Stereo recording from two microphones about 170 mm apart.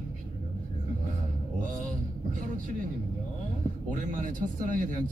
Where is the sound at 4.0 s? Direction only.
50° right (ahead or behind).